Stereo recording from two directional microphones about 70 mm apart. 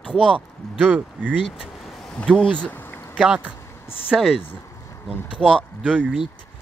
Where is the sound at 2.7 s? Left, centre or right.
Left.